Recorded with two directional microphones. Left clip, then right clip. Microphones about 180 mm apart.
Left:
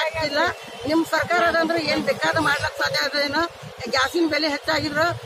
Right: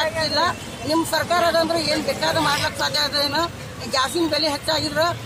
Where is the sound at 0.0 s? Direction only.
Centre (ahead or behind).